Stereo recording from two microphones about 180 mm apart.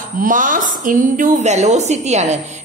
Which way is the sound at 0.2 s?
50° right (ahead or behind).